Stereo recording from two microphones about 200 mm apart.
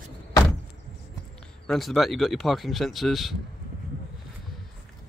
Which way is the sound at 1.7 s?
Centre (ahead or behind).